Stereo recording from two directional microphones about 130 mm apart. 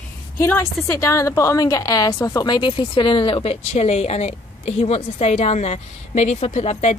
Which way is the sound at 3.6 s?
55° left (ahead or behind).